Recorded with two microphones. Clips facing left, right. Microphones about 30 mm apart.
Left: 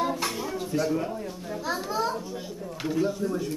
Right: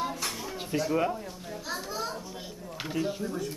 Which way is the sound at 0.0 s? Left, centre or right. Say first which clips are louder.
Left 5 dB; centre.